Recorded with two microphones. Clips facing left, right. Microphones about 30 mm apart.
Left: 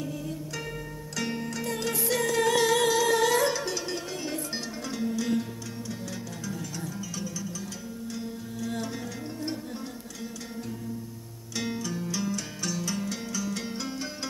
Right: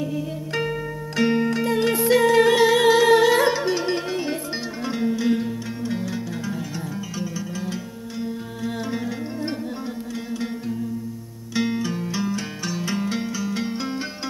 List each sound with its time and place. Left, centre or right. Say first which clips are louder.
0.6 s music: right 11 dB; right
7.2 s music: right 7 dB; right
11.5 s music: right 8 dB; right